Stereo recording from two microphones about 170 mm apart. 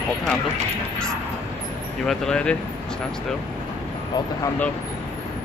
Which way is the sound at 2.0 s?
5° left (ahead or behind).